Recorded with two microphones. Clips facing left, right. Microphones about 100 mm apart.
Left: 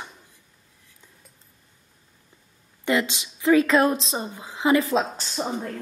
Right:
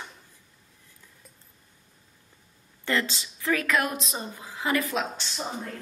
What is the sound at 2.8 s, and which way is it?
A woman's voice, 15° left (ahead or behind).